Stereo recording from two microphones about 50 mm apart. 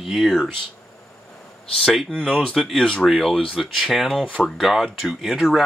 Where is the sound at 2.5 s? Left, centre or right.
Centre.